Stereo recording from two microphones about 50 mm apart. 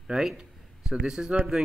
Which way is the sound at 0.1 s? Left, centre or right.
Centre.